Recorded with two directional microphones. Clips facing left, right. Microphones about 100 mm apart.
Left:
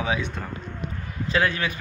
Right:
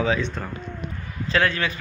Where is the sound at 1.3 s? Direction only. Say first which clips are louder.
Right 1 dB; 15° left (ahead or behind).